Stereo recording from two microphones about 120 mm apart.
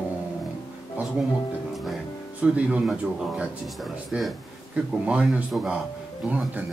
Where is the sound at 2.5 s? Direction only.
10° right (ahead or behind).